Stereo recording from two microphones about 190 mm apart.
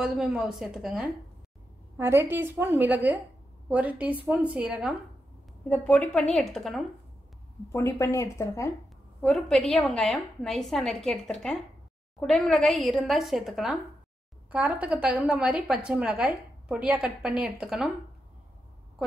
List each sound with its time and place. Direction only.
0.0 s a woman's voice: centre (ahead or behind)
5.7 s a woman's voice: 5° left (ahead or behind)
7.7 s speech: 15° left (ahead or behind)
9.2 s a woman's voice: centre (ahead or behind)